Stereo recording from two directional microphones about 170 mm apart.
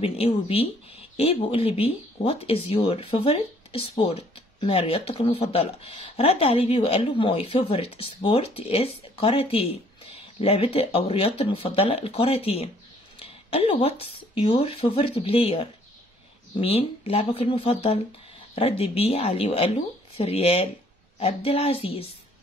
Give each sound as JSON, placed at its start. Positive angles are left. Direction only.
{"t": 0.0, "sound": "speech", "side_deg": 35}